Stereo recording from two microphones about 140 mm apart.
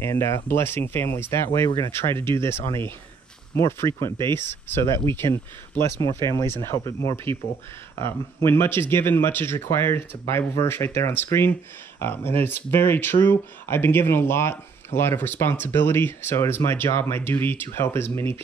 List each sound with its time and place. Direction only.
0.0 s speech: 20° left (ahead or behind)